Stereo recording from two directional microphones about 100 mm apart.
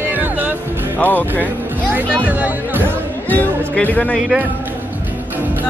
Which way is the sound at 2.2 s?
15° right (ahead or behind).